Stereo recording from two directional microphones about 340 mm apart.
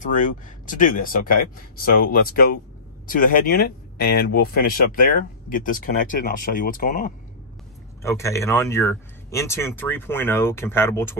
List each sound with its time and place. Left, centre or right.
0.7 s speech: left
8.0 s speech: centre